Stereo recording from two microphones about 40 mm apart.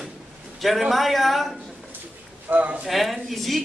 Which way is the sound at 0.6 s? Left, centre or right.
Centre.